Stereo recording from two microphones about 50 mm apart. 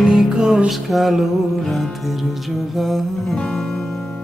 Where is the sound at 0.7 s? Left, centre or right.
Centre.